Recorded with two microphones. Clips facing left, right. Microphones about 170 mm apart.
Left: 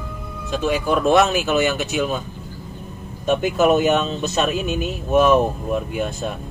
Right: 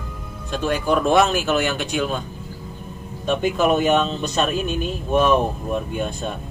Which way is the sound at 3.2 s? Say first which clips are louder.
Left 2 dB; 5° left (ahead or behind).